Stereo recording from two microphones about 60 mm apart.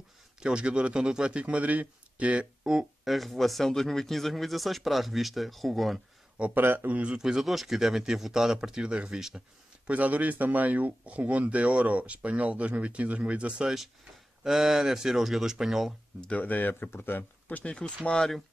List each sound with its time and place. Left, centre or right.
0.4 s speech: centre
2.6 s speech: centre
3.1 s speech: centre
6.5 s speech: right
7.2 s speech: centre
9.8 s speech: right
14.4 s speech: centre
16.2 s speech: left
18.0 s speech: centre